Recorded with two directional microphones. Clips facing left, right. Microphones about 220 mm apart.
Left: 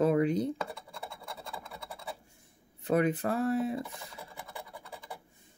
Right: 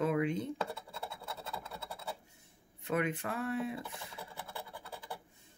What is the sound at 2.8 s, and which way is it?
Speech, 35° left (ahead or behind).